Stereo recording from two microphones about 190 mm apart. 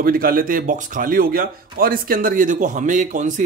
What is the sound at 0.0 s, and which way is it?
Speech, 50° right (ahead or behind).